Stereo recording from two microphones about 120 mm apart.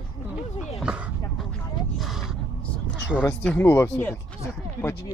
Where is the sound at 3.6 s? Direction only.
20° left (ahead or behind).